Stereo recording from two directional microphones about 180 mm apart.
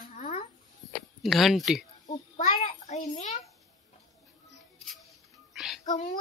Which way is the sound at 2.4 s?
45° left (ahead or behind).